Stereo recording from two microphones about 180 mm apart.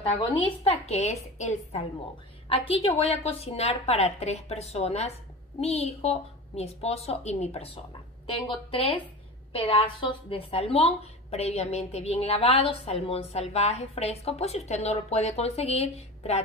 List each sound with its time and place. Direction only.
0.4 s a woman's voice: 35° left (ahead or behind)